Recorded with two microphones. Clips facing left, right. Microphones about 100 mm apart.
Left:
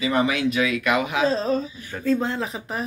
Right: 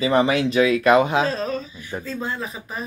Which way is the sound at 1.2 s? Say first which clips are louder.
Left 3 dB; 30° left (ahead or behind).